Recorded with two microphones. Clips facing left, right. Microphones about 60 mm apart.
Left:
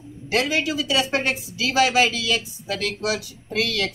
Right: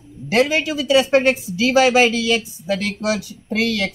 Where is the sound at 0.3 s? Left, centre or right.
Right.